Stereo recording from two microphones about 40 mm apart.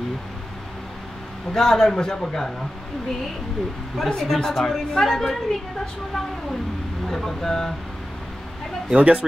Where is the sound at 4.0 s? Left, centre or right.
Centre.